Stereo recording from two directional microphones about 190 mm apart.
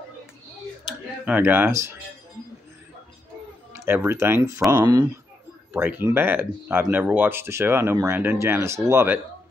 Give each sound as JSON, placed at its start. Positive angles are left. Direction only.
{"t": 1.2, "sound": "speech", "side_deg": -10}
{"t": 3.7, "sound": "speech", "side_deg": -10}
{"t": 5.7, "sound": "speech", "side_deg": -10}